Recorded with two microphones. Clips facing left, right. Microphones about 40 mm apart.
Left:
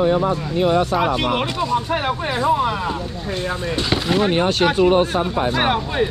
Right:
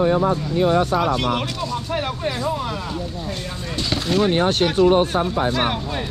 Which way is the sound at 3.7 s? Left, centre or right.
Left.